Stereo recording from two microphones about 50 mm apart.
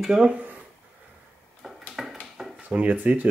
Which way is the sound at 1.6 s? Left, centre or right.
Centre.